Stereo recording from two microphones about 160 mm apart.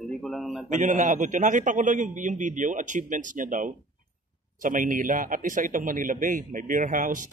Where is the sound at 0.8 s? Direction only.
50° right (ahead or behind).